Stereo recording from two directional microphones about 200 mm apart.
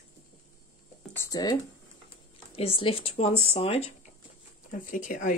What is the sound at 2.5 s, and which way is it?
Speech, 30° left (ahead or behind).